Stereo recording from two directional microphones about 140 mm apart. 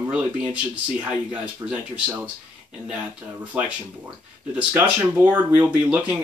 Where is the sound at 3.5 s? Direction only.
10° right (ahead or behind).